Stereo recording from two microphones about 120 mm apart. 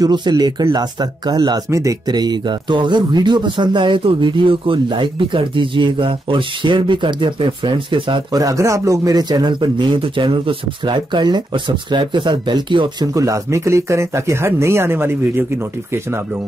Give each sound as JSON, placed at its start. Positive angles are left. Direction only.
{"t": 0.0, "sound": "speech", "side_deg": -35}
{"t": 8.4, "sound": "speech", "side_deg": -25}
{"t": 13.1, "sound": "speech", "side_deg": -25}